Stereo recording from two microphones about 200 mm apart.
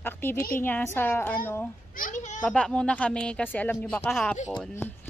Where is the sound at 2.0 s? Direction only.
40° left (ahead or behind).